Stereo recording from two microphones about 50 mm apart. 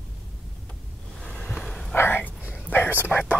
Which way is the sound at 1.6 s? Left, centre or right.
Centre.